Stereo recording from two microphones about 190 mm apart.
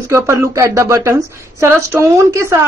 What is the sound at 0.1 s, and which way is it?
A man's voice, 15° right (ahead or behind).